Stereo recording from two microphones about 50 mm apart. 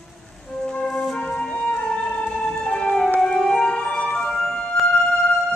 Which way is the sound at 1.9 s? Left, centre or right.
Centre.